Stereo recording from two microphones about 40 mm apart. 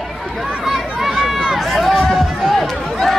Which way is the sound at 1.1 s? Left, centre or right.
Centre.